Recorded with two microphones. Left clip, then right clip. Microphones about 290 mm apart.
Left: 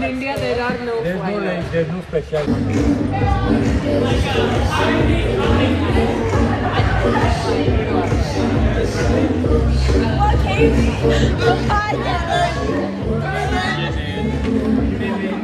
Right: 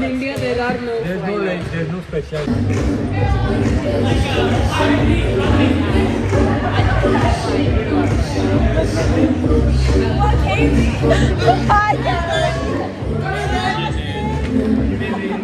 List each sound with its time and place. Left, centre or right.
11.1 s speech: centre